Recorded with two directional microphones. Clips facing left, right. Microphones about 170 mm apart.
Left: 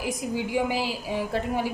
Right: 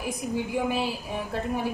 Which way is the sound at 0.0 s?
90° left.